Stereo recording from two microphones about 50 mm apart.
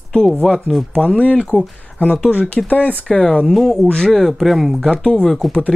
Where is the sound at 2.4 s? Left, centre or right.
Left.